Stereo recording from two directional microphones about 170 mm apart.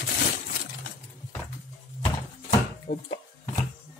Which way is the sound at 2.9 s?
90° left.